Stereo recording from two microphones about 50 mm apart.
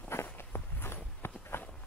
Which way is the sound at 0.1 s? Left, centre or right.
Left.